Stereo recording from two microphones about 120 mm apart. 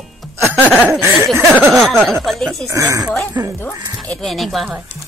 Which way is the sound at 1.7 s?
Centre (ahead or behind).